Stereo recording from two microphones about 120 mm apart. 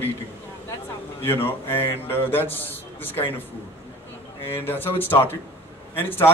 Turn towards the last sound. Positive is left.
turn(degrees=15)  # may be behind; listen again after turning